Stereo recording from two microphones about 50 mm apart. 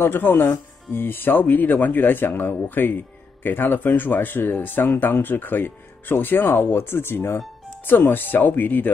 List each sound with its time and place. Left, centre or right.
0.0 s speech: left